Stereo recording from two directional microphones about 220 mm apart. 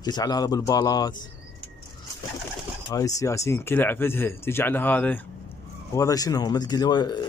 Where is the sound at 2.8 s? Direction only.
15° left (ahead or behind).